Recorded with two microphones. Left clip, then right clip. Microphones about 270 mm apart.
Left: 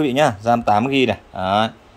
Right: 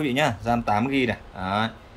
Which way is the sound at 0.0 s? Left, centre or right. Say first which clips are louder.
Left 7 dB; left.